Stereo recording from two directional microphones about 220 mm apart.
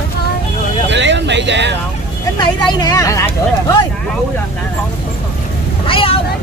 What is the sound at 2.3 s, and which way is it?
Speech, 15° left (ahead or behind).